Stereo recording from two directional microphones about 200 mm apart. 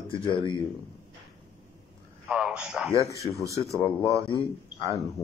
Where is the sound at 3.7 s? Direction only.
15° left (ahead or behind).